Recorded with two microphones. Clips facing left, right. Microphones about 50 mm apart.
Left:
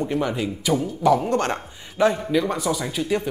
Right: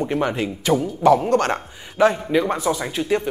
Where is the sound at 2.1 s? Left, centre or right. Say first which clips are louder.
Right 2 dB; centre.